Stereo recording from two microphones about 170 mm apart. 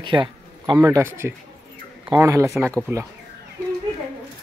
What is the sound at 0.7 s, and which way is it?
A man's voice, 15° right (ahead or behind).